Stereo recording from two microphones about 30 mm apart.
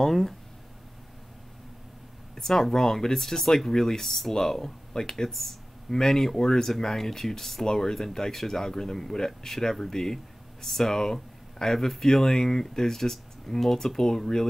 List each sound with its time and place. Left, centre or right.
0.0 s speech: centre
2.3 s speech: centre
5.3 s speech: centre
5.9 s speech: centre